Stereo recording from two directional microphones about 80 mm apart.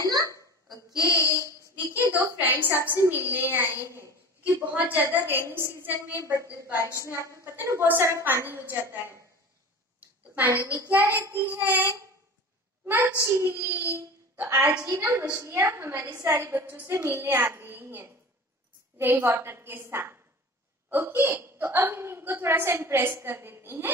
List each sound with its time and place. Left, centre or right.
0.0 s a sound: right
1.0 s child singing: left
2.3 s a woman's voice: right
4.4 s a woman's voice: centre
10.3 s a woman's voice: right
13.9 s a sound: right
14.6 s a woman's voice: centre
14.9 s a woman's voice: right